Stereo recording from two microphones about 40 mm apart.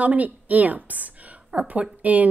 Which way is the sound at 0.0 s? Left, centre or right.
Right.